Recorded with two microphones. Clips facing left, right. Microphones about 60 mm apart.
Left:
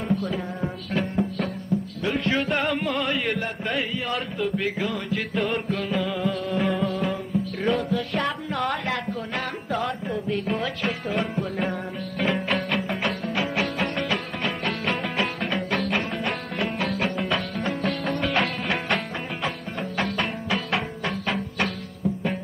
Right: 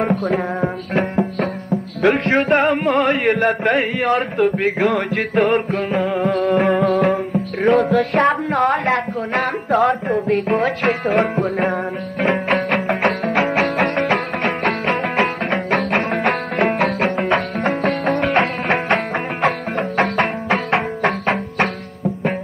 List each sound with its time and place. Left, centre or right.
0.0 s music: right
2.0 s music: right
12.5 s music: right
19.4 s music: right